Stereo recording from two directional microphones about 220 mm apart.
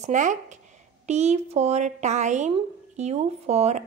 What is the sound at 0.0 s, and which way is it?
A woman's voice, 35° right (ahead or behind).